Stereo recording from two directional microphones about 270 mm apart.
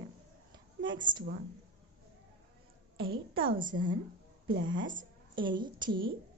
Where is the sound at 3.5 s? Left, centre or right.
Right.